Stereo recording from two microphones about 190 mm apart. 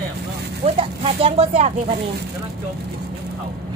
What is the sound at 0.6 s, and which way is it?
Speech, 30° right (ahead or behind).